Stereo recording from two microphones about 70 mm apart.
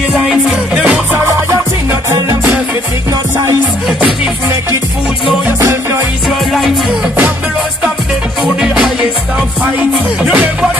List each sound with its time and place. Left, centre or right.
0.1 s music: centre
1.2 s music: right
5.6 s music: right
6.2 s music: centre